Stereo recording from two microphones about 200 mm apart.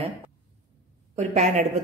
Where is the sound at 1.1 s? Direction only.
35° right (ahead or behind).